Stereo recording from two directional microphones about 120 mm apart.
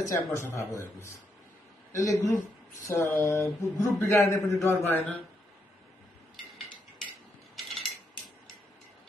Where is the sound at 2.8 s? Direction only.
30° left (ahead or behind); by 5.2 s 15° left (ahead or behind).